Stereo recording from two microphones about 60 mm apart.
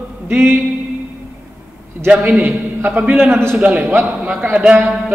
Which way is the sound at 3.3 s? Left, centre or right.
Right.